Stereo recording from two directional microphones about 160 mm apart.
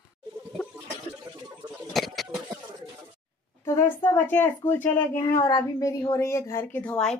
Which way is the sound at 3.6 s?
15° left (ahead or behind).